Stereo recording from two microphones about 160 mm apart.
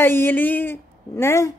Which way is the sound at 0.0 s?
15° left (ahead or behind).